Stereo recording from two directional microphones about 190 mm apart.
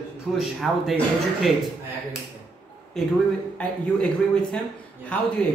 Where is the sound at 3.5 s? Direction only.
5° left (ahead or behind).